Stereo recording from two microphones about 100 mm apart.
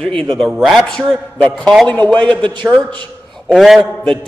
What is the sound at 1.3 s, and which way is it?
Speech, 10° left (ahead or behind).